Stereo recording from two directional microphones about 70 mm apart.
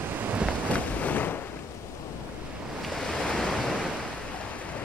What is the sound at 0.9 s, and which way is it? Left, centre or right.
Waves, left.